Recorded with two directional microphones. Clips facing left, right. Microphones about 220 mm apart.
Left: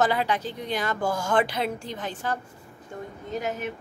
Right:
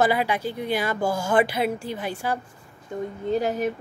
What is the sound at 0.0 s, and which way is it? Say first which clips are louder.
A woman's voice: right 2 dB; 10° right (ahead or behind).